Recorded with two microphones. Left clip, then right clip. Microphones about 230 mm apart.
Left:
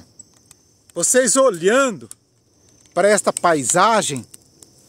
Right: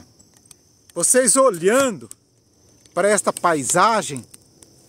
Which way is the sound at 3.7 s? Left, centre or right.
Left.